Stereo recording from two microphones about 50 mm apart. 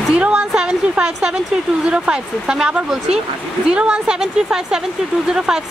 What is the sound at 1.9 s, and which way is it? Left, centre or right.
Speech, centre.